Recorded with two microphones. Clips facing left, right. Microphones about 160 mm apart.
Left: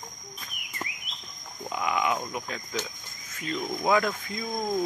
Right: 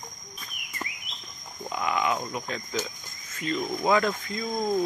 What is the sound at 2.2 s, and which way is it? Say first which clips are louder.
Speech: right 1 dB; 5° left (ahead or behind).